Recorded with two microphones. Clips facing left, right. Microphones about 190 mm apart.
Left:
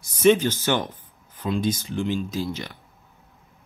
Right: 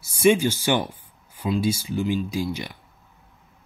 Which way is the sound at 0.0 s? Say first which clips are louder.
Left 1 dB; 10° right (ahead or behind).